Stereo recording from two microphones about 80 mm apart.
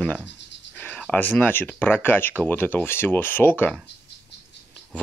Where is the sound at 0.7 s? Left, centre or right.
Left.